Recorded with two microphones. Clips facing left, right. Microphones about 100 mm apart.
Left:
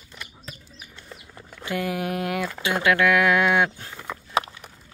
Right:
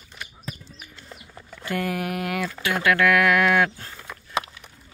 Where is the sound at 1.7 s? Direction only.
15° left (ahead or behind).